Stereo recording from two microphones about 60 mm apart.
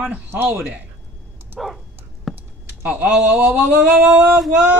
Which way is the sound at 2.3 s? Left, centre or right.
Right.